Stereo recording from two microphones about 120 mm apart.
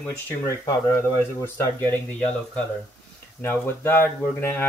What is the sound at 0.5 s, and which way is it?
Speech, 25° left (ahead or behind).